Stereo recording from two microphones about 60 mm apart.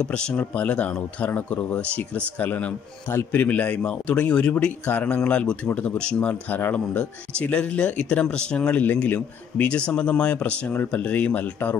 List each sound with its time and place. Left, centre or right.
0.0 s speech: centre
6.5 s speech: left